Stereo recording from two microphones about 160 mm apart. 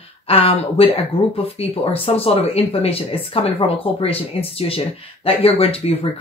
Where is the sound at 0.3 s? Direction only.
35° left (ahead or behind).